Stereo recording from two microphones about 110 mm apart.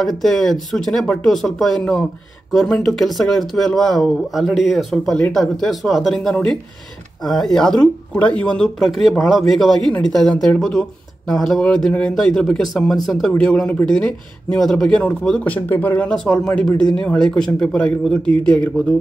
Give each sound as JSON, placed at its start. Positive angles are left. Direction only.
{"t": 0.0, "sound": "speech", "side_deg": 5}
{"t": 10.3, "sound": "speech", "side_deg": 15}
{"t": 10.6, "sound": "speech", "side_deg": 5}